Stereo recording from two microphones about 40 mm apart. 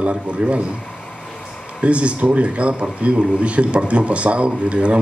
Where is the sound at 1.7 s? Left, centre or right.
Right.